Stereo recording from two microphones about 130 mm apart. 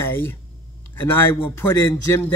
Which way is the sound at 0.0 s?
15° left (ahead or behind).